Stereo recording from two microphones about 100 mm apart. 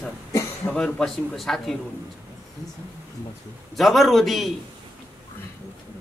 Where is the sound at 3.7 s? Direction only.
Centre (ahead or behind).